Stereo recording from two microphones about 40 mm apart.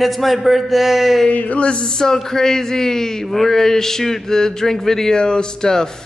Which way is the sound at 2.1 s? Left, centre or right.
Centre.